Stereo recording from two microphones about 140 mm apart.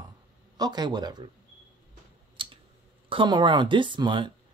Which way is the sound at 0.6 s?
30° right (ahead or behind).